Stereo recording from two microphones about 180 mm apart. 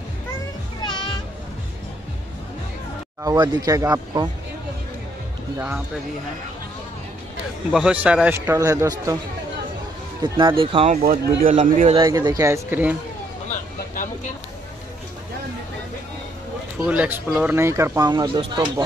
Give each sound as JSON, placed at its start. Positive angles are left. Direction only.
{"t": 0.8, "sound": "music", "side_deg": 25}
{"t": 3.3, "sound": "speech", "side_deg": -20}
{"t": 7.7, "sound": "speech", "side_deg": -5}
{"t": 10.2, "sound": "speech", "side_deg": -25}
{"t": 11.1, "sound": "speech", "side_deg": -45}
{"t": 12.0, "sound": "speech", "side_deg": -20}
{"t": 16.8, "sound": "speech", "side_deg": -10}